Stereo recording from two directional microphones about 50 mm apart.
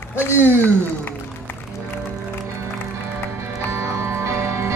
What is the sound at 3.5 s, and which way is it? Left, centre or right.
Music, right.